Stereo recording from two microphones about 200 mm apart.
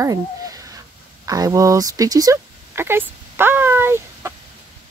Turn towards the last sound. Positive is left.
turn(degrees=-10)  # may be behind; listen again after turning